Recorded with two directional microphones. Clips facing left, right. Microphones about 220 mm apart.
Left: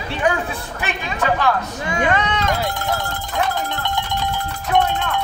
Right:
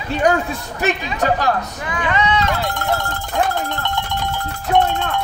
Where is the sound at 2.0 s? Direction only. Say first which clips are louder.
Right 1 dB; 50° left (ahead or behind).